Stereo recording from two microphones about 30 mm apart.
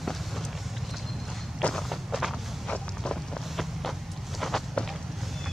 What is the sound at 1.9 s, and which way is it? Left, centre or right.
Walk, centre.